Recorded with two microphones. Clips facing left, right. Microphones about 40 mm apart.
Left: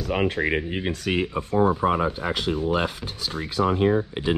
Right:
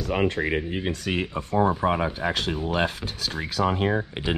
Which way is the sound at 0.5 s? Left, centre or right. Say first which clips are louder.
Left 1 dB; centre.